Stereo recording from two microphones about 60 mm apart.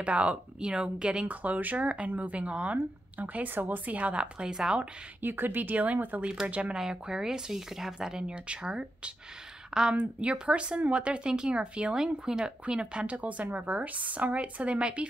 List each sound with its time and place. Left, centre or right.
0.0 s speech: right
1.2 s speech: right
5.2 s speech: right; by 15.0 s centre